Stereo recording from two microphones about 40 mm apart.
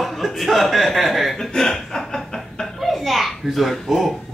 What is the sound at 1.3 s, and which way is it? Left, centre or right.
Speech, centre.